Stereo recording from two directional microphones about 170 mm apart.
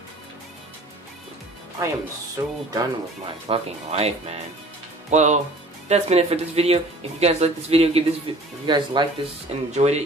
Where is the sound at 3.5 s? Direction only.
40° right (ahead or behind).